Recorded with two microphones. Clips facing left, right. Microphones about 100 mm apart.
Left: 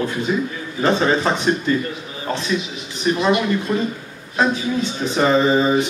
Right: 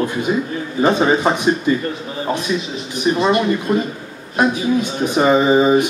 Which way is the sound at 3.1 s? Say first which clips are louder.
Right 2 dB; 15° right (ahead or behind).